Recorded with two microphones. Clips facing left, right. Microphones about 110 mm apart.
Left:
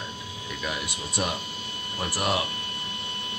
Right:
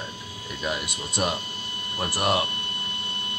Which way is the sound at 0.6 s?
20° right (ahead or behind).